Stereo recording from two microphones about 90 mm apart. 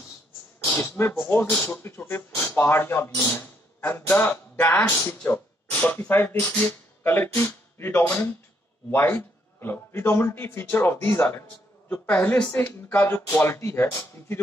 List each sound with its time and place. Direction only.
0.8 s a man's voice: 25° left (ahead or behind)